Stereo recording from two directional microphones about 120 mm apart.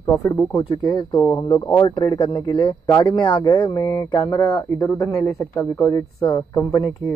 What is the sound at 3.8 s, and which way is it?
Speech, 25° left (ahead or behind).